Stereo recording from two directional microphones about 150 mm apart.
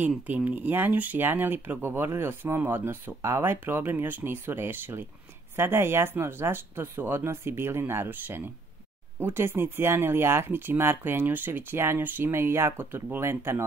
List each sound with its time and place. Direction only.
0.5 s speech: 10° right (ahead or behind)